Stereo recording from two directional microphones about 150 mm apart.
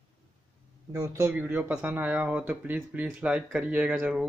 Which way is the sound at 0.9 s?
10° right (ahead or behind).